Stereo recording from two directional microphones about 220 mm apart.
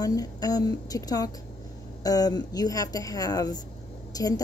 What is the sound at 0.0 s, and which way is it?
A woman's voice, 15° left (ahead or behind).